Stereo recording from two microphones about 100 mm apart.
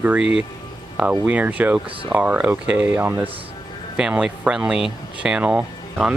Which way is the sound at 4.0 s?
10° right (ahead or behind).